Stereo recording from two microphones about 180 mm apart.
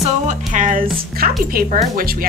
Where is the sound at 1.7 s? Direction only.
40° right (ahead or behind).